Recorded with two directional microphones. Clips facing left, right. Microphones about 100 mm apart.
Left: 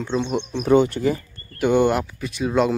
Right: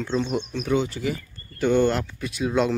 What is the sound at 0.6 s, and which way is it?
Speech, 55° left (ahead or behind).